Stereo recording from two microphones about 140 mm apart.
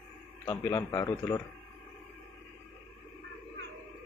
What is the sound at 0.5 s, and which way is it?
Speech, 20° left (ahead or behind).